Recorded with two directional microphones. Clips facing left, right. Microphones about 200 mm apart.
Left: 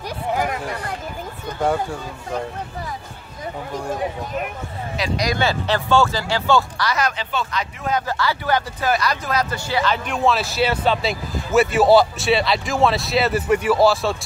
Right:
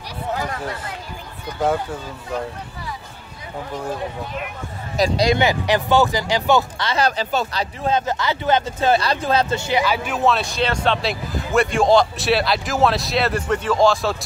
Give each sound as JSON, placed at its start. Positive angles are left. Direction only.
{"t": 1.6, "sound": "a man's voice", "side_deg": 0}
{"t": 4.9, "sound": "speech", "side_deg": -40}
{"t": 5.2, "sound": "speech", "side_deg": -20}
{"t": 9.8, "sound": "a man's voice", "side_deg": -5}